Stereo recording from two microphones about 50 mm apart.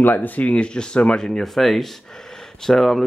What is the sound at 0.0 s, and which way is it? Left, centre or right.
Speech, left.